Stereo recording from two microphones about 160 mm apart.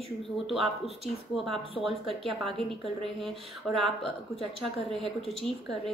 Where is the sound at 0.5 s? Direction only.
Centre (ahead or behind).